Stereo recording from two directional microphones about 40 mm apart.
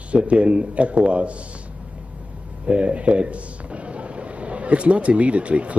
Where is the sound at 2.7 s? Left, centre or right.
Right.